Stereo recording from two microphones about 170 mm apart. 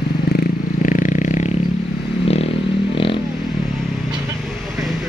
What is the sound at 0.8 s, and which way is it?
Vehicle, 50° left (ahead or behind).